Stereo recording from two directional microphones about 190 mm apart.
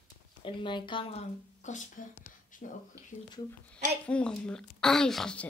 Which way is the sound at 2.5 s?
45° left (ahead or behind).